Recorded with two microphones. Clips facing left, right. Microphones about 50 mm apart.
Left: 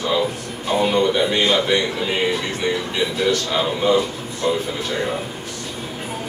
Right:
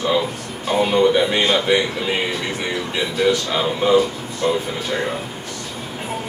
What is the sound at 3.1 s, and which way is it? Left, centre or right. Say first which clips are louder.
Speech: right 3 dB; centre.